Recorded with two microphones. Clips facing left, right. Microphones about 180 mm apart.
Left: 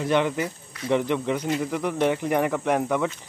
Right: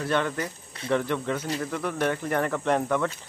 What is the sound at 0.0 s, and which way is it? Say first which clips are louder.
Speech: left 4 dB; 15° left (ahead or behind).